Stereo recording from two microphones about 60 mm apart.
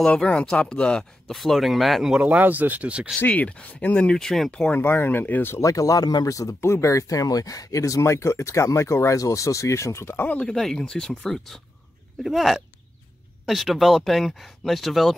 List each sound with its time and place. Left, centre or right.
0.1 s speech: centre
1.3 s speech: centre
2.1 s speech: right
3.2 s speech: left; by 4.5 s centre
4.7 s speech: left
5.6 s speech: left
6.6 s speech: left
10.1 s speech: left
10.4 s speech: centre